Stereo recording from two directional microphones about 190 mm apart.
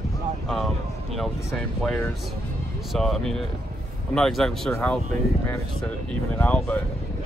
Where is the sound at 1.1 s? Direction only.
Centre (ahead or behind).